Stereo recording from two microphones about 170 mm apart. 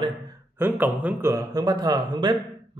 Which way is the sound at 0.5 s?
10° right (ahead or behind).